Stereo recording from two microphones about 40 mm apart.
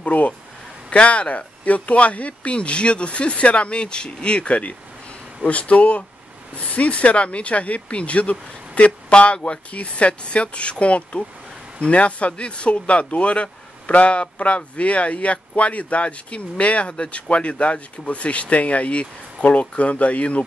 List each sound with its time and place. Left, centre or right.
0.0 s speech: left